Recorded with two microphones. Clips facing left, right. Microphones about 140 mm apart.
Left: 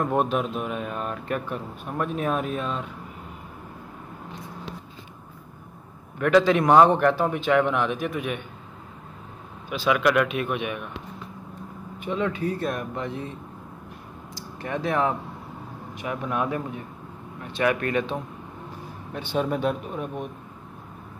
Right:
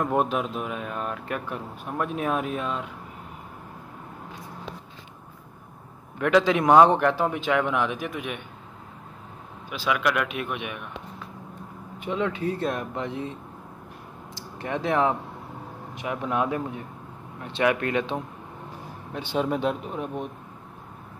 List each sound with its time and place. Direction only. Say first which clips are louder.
0.2 s speech: left 1 dB; 10° right (ahead or behind)
0.6 s speech: left 1 dB; centre (ahead or behind)
1.5 s speech: left 1 dB; 10° right (ahead or behind)
6.2 s speech: left 1 dB; 15° right (ahead or behind)
9.8 s speech: left 4 dB; 5° right (ahead or behind)
12.0 s speech: left 1 dB; 20° right (ahead or behind)
14.3 s speech: even; 20° right (ahead or behind)